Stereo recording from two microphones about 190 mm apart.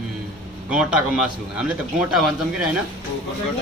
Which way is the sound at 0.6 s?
5° right (ahead or behind).